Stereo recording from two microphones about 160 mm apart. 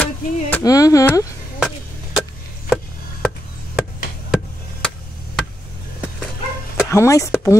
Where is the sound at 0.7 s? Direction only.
20° left (ahead or behind).